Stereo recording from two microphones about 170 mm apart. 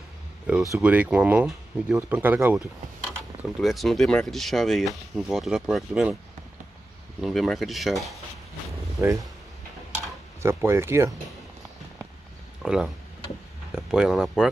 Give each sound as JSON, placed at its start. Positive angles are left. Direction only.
{"t": 0.7, "sound": "speech", "side_deg": -5}
{"t": 3.6, "sound": "speech", "side_deg": 0}
{"t": 7.2, "sound": "speech", "side_deg": 0}
{"t": 9.0, "sound": "speech", "side_deg": -20}
{"t": 10.4, "sound": "speech", "side_deg": -15}
{"t": 12.6, "sound": "speech", "side_deg": -5}